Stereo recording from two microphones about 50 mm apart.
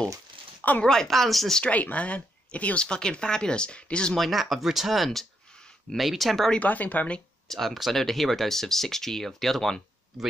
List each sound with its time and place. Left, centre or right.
0.6 s a sound: left
0.8 s speech: centre
1.6 s speech: left
4.1 s speech: centre
6.6 s speech: left
7.4 s speech: centre